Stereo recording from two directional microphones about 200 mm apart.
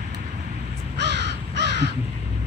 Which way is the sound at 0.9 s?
60° right (ahead or behind).